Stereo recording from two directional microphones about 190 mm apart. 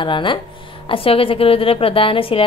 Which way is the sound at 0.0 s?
25° left (ahead or behind).